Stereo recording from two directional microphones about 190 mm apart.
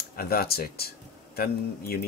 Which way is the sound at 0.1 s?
55° left (ahead or behind).